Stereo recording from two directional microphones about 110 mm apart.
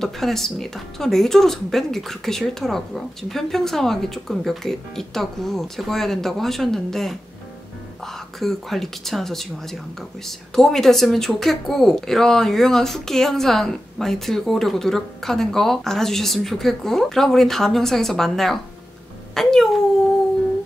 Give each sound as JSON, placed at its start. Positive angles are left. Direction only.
{"t": 0.0, "sound": "a woman's voice", "side_deg": 5}